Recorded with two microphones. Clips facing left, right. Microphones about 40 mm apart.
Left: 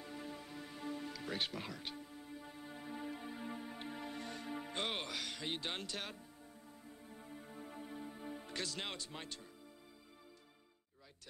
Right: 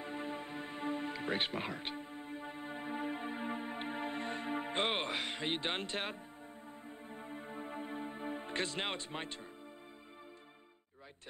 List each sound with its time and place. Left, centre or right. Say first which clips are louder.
0.0 s music: right 7 dB; right